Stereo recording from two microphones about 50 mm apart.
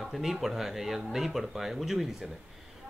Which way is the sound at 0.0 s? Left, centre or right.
Centre.